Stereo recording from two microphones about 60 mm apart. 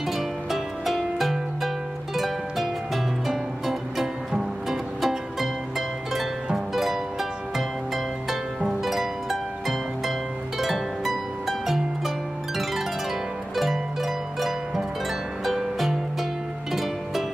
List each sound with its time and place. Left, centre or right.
0.0 s music: centre
10.6 s harp: centre
13.6 s music: centre